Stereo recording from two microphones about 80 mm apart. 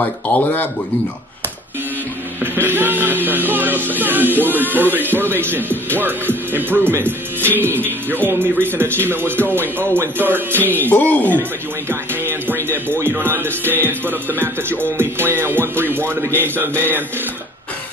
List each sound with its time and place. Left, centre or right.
0.0 s speech: left
2.4 s music: right
3.3 s speech: right
10.7 s speech: left
11.9 s music: right